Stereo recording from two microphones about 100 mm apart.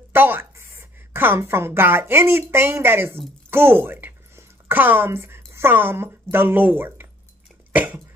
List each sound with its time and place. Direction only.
0.1 s a woman's voice: 20° right (ahead or behind)
3.4 s a sound: 20° right (ahead or behind)
5.5 s a woman's voice: 25° right (ahead or behind)
7.7 s cough: 15° right (ahead or behind)